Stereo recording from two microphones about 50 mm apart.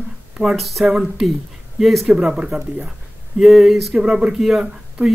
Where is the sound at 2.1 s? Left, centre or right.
Centre.